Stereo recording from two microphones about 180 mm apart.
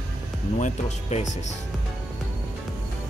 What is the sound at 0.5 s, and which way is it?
Speech, 40° left (ahead or behind).